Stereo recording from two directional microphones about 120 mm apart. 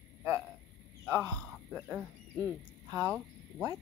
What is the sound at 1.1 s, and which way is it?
Speech, 15° left (ahead or behind).